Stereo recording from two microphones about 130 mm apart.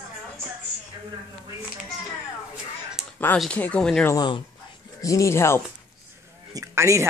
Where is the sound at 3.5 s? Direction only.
10° left (ahead or behind).